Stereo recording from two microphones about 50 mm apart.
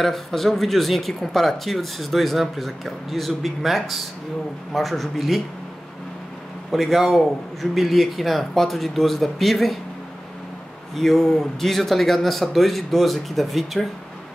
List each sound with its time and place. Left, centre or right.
0.0 s speech: centre
6.7 s speech: centre
11.0 s speech: centre